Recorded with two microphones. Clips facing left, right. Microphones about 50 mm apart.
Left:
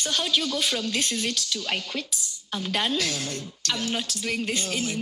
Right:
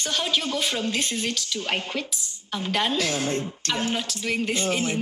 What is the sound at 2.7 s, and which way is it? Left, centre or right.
Speech, centre.